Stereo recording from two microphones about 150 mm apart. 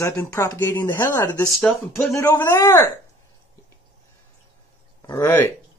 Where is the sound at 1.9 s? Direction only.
15° left (ahead or behind).